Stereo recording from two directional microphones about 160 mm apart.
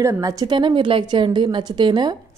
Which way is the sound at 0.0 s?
20° right (ahead or behind).